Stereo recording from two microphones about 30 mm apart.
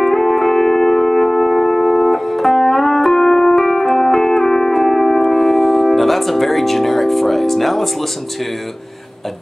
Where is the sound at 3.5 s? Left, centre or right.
Centre.